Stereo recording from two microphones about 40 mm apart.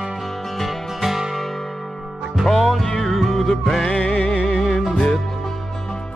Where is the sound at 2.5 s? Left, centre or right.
Centre.